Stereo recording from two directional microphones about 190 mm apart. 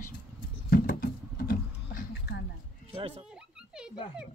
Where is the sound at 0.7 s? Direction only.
50° left (ahead or behind).